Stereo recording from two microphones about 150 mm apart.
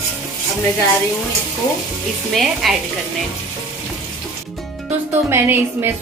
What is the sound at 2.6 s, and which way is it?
Speech, centre (ahead or behind).